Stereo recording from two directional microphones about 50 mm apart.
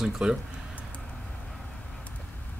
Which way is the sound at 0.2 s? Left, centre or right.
Centre.